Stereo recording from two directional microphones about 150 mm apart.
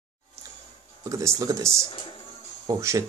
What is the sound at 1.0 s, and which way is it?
Speech, 20° right (ahead or behind).